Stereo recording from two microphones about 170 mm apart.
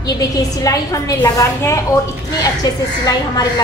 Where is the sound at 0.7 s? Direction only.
20° left (ahead or behind).